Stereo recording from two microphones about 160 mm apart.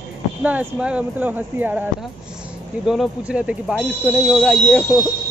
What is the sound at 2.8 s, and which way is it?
Speech, centre (ahead or behind).